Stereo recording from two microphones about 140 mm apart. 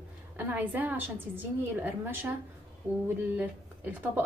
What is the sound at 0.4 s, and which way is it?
A woman's voice, 10° right (ahead or behind).